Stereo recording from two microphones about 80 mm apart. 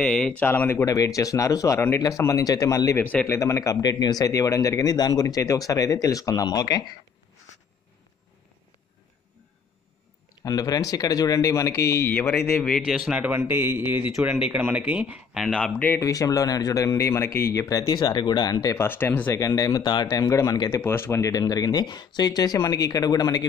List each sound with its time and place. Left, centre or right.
0.0 s speech: centre
0.4 s speech: left
0.8 s speech: left
3.0 s speech: centre
3.3 s speech: left
3.8 s speech: left
10.4 s speech: left
12.1 s speech: left
12.6 s speech: centre
13.2 s a man's voice: right; by 15.4 s centre
16.0 s speech: left
18.8 s speech: left
19.3 s speech: left
20.2 s speech: left